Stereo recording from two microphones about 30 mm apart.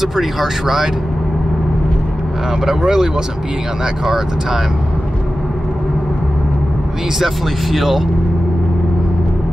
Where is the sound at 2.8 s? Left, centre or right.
Right.